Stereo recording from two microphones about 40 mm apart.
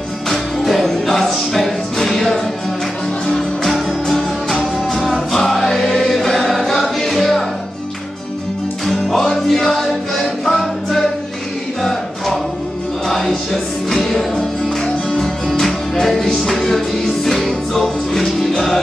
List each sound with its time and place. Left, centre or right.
0.3 s music: centre
3.6 s music: centre
5.3 s choir: centre
8.8 s music: centre